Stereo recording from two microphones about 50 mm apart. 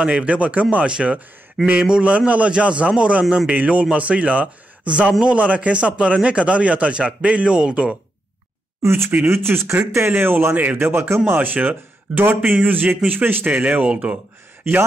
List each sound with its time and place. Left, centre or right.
0.0 s speech: right
8.8 s speech: right
10.8 s speech: right
11.3 s speech: right